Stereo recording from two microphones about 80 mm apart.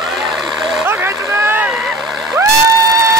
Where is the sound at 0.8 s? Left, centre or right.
Right.